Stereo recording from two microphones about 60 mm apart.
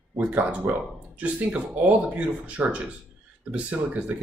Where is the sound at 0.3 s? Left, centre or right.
Right.